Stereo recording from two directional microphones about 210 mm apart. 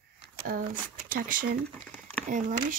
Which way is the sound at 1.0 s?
40° right (ahead or behind).